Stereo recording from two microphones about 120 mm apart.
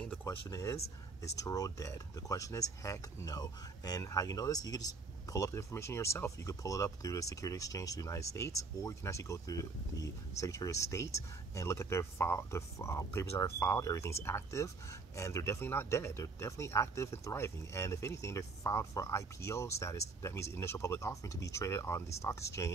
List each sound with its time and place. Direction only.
0.2 s speech: 25° left (ahead or behind)